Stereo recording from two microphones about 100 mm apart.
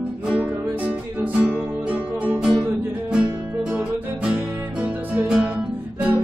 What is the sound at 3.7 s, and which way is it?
Music, 15° right (ahead or behind).